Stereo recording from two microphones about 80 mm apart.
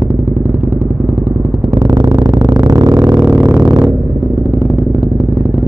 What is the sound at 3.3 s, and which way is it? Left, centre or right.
Vehicle, right.